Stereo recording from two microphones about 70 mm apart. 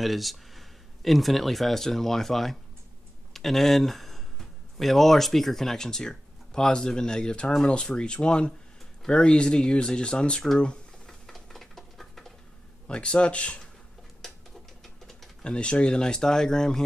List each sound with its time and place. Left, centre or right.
0.0 s speech: centre
9.0 s a sound: centre
12.8 s speech: centre
15.0 s speech: centre